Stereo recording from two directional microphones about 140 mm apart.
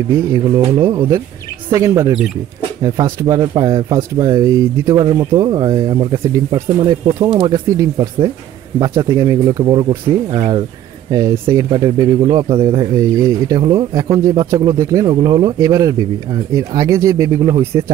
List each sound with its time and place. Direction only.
0.7 s speech: 20° right (ahead or behind)
5.0 s speech: 35° right (ahead or behind)
11.1 s speech: 25° right (ahead or behind)